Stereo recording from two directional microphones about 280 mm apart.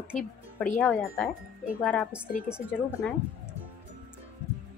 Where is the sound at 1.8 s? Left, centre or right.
Centre.